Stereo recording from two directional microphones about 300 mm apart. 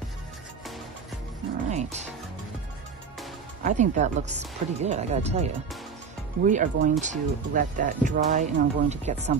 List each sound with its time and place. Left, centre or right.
1.7 s speech: right
3.6 s speech: right